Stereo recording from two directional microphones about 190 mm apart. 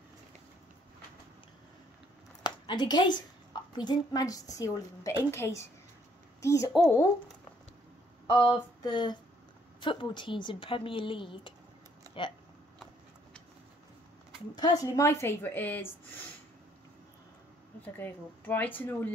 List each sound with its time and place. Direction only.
2.4 s a sound: 20° left (ahead or behind)
3.7 s a woman's voice: 20° left (ahead or behind)
8.3 s speech: 30° left (ahead or behind)
14.5 s a woman's voice: 20° left (ahead or behind)
17.9 s a woman's voice: 10° left (ahead or behind)